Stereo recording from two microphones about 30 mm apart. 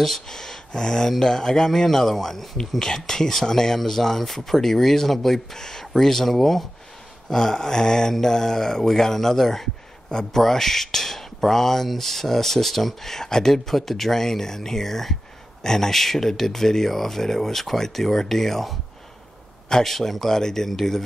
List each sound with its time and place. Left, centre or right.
0.3 s speech: centre
2.8 s speech: centre
7.2 s speech: centre
13.1 s speech: centre
19.7 s speech: centre